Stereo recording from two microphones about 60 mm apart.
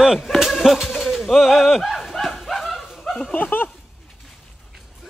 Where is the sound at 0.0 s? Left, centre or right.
Centre.